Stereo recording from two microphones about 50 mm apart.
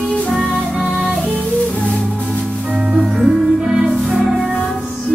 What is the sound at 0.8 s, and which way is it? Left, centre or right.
Music, right.